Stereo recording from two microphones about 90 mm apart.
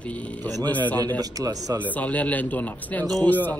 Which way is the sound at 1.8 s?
15° left (ahead or behind).